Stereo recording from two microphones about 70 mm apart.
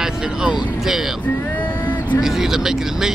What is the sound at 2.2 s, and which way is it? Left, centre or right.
Speech, centre.